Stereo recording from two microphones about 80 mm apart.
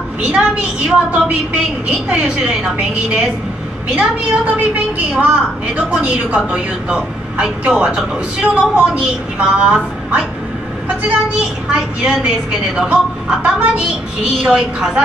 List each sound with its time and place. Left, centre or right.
0.2 s a woman's voice: centre